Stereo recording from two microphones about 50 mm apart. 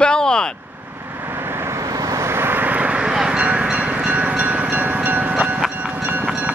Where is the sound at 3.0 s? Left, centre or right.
Centre.